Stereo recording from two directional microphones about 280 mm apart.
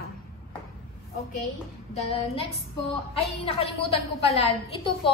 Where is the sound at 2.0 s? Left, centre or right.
Left.